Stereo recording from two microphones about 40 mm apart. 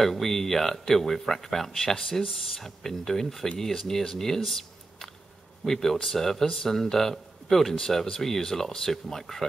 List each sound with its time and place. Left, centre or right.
0.0 s speech: centre
4.2 s a sound: centre
5.7 s speech: centre